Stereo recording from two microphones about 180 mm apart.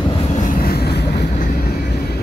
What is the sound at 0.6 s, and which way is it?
Vehicle, 60° left (ahead or behind).